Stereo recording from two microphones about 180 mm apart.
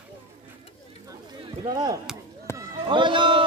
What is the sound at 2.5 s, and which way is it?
Basketball bounce, 15° left (ahead or behind).